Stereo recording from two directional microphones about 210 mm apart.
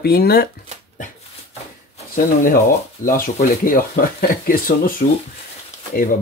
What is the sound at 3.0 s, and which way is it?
Speech, 40° left (ahead or behind).